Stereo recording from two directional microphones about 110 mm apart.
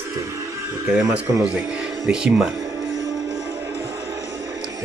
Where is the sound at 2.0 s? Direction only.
10° right (ahead or behind).